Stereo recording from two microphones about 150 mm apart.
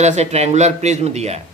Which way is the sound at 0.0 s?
50° right (ahead or behind).